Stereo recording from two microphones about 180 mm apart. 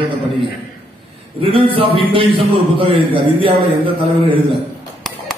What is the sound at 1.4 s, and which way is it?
A man's voice, 30° right (ahead or behind).